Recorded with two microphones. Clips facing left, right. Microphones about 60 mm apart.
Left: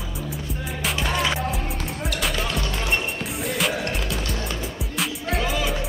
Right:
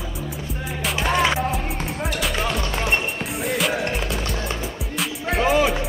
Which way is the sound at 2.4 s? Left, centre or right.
Centre.